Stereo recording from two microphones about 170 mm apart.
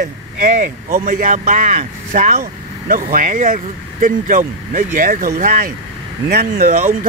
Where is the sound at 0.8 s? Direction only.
55° right (ahead or behind).